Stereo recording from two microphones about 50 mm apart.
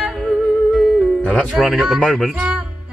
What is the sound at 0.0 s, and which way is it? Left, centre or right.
Music, centre.